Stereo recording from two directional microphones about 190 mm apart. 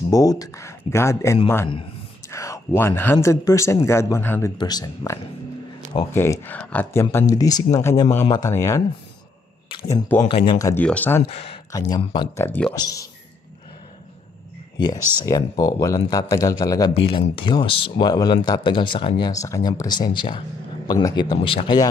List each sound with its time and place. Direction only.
0.1 s speech: 20° left (ahead or behind)
9.7 s a sound: 20° left (ahead or behind)
10.2 s speech: 25° left (ahead or behind)
10.7 s speech: 10° left (ahead or behind)
11.3 s speech: 30° left (ahead or behind)
12.4 s speech: 10° left (ahead or behind)
15.0 s speech: 10° right (ahead or behind)
15.2 s speech: 20° left (ahead or behind)